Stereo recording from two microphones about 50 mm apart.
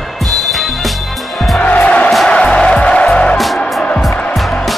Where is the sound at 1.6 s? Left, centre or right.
Left.